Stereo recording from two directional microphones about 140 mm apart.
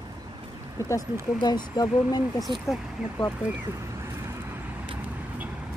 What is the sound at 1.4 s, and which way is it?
Speech, 30° left (ahead or behind).